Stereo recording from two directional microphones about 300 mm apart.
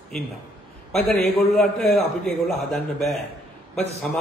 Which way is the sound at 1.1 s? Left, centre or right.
Centre.